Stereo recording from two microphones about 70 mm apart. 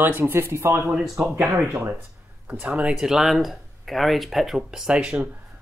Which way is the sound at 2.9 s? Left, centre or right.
Centre.